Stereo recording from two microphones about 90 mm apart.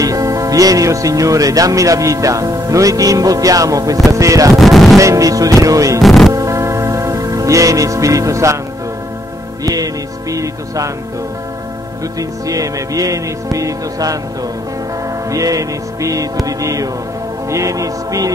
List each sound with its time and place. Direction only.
0.0 s speech: 40° right (ahead or behind)
4.6 s music: centre (ahead or behind)
4.9 s speech: 35° right (ahead or behind)
5.9 s music: centre (ahead or behind)
6.3 s music: 35° right (ahead or behind)
10.3 s speech: 40° right (ahead or behind)
12.2 s speech: 40° right (ahead or behind)
15.3 s speech: 40° right (ahead or behind)